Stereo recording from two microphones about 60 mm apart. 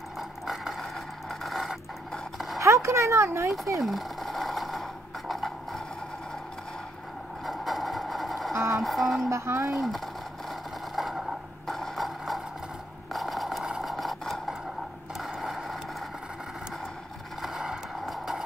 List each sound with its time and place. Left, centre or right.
0.2 s vehicle: centre
1.3 s a sound: centre
2.6 s a sound: right
3.3 s speech: right
3.8 s a sound: centre
7.4 s sewing machine: centre
8.5 s music: right
8.8 s music: centre
9.2 s speech: right
9.8 s speech: centre
10.5 s a sound: centre
17.4 s vehicle: centre